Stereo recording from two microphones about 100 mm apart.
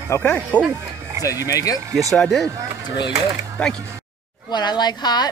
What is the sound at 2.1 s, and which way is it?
Speech, 5° left (ahead or behind).